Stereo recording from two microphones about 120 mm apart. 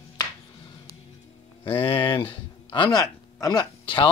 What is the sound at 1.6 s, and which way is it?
Speech, 45° left (ahead or behind).